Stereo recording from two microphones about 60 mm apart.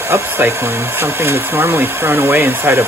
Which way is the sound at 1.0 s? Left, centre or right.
Right.